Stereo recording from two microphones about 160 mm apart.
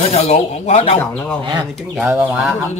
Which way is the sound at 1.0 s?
15° left (ahead or behind).